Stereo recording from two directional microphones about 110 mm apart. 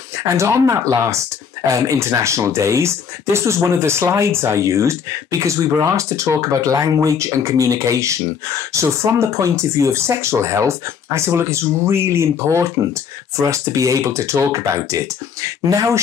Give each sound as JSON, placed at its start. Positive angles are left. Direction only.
{"t": 0.2, "sound": "speech", "side_deg": -25}